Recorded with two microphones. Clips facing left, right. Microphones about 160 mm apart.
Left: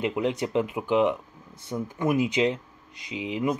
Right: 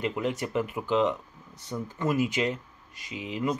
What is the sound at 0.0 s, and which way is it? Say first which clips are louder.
Speech: left 3 dB; 15° left (ahead or behind).